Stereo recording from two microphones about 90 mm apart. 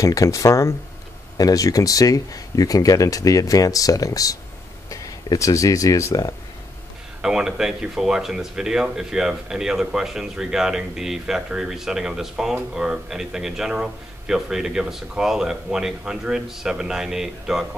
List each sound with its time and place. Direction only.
0.0 s speech: 40° left (ahead or behind)
7.2 s speech: 5° right (ahead or behind)